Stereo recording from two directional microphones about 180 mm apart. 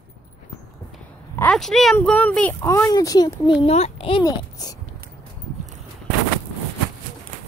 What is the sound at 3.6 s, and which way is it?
A child's voice, 35° left (ahead or behind).